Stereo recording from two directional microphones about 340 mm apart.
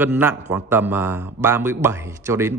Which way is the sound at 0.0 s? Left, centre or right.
Centre.